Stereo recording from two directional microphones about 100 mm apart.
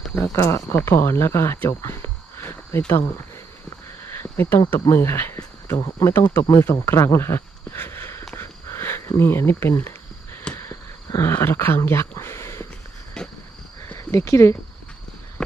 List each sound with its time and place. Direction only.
0.1 s speech: 25° left (ahead or behind)
4.2 s speech: 25° left (ahead or behind)
5.8 s speech: 40° left (ahead or behind)
6.1 s speech: 25° left (ahead or behind)
8.4 s a sound: 25° left (ahead or behind)
10.7 s speech: 30° left (ahead or behind)
13.2 s cricket: 5° left (ahead or behind)
13.9 s speech: 30° left (ahead or behind)